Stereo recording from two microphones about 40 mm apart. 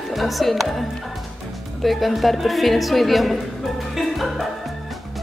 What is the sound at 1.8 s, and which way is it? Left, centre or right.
A woman's voice, centre.